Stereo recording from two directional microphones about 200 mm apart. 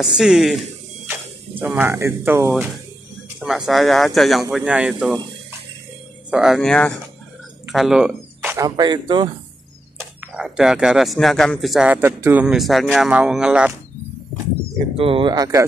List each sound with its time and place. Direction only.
0.2 s a sound: centre (ahead or behind)
1.6 s speech: 10° right (ahead or behind)
6.3 s speech: centre (ahead or behind); by 9.3 s 20° right (ahead or behind)
9.9 s speech: 10° right (ahead or behind)
15.0 s speech: 25° right (ahead or behind)